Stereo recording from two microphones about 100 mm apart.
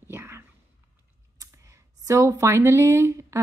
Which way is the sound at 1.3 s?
35° right (ahead or behind).